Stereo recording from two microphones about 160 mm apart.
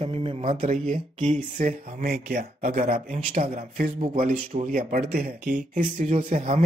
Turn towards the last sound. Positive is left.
turn(degrees=-55)  # may be behind; listen again after turning